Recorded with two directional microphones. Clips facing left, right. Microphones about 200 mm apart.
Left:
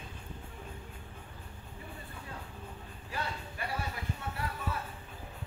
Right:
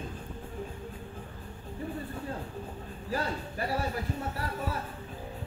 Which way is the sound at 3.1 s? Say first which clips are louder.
Right 7 dB; 35° right (ahead or behind).